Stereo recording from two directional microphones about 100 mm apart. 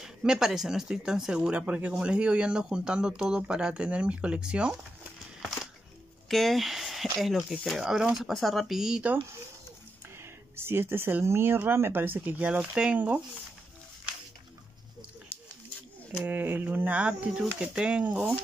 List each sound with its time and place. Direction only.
0.0 s speech: 5° right (ahead or behind)
6.2 s speech: centre (ahead or behind)
10.5 s speech: 25° right (ahead or behind)
16.3 s speech: 20° right (ahead or behind)